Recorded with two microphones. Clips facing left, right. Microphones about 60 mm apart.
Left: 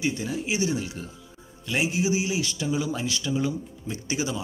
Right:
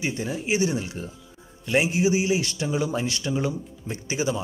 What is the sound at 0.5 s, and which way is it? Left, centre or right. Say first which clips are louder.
Speech: right 4 dB; right.